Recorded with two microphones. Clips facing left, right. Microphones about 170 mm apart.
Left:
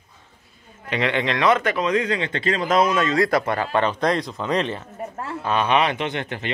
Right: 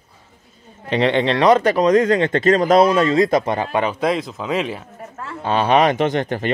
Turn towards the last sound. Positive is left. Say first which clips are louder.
# right 8 dB
turn(degrees=-45)  # may be behind; listen again after turning